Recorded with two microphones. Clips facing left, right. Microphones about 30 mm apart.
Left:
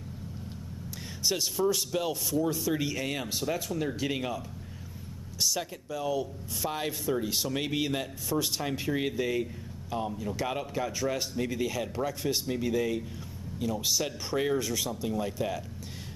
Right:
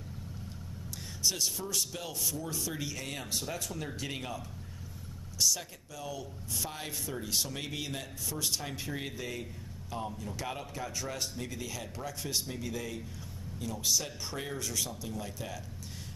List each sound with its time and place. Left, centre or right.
1.2 s speech: centre
5.4 s speech: centre